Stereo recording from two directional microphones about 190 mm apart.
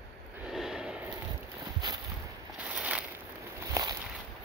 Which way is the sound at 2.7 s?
5° right (ahead or behind).